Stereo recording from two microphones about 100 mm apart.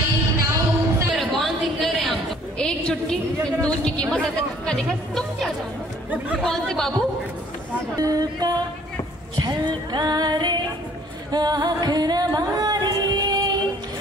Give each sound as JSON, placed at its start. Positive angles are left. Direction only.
{"t": 0.4, "sound": "a sound", "side_deg": -30}
{"t": 1.1, "sound": "a sound", "side_deg": 0}
{"t": 3.4, "sound": "chatter", "side_deg": 10}
{"t": 6.0, "sound": "chatter", "side_deg": -15}
{"t": 6.4, "sound": "speech", "side_deg": 5}
{"t": 8.0, "sound": "music", "side_deg": -40}